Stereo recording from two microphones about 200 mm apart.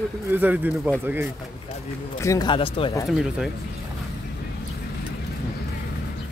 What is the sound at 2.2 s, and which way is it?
Speech, 15° left (ahead or behind).